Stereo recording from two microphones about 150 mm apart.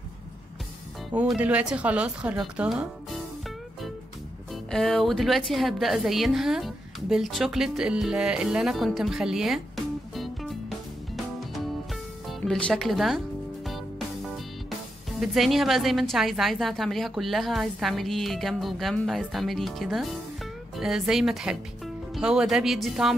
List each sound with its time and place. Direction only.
1.1 s speech: 5° right (ahead or behind)
4.6 s a woman's voice: 5° left (ahead or behind)
10.1 s music: centre (ahead or behind)
15.1 s a woman's voice: centre (ahead or behind)